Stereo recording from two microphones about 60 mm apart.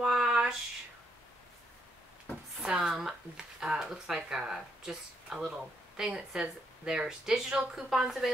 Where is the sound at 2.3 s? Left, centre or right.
Left.